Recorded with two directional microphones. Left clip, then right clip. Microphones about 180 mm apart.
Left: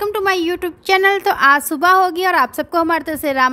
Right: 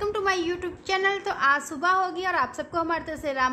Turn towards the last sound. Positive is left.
turn(degrees=60)  # may be behind; listen again after turning